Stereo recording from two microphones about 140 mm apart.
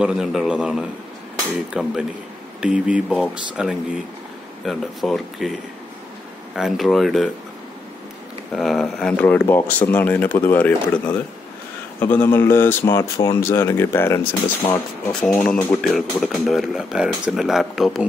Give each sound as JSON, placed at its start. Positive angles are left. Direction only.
{"t": 0.0, "sound": "speech", "side_deg": -5}
{"t": 8.5, "sound": "speech", "side_deg": 0}
{"t": 15.1, "sound": "speech", "side_deg": 5}